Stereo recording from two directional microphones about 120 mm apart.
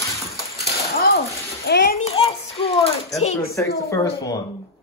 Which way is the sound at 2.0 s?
50° left (ahead or behind).